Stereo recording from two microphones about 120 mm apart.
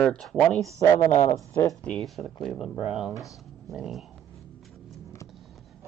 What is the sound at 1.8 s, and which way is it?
Speech, 5° left (ahead or behind).